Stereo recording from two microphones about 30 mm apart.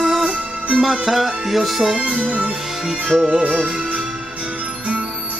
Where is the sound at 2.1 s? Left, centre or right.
Right.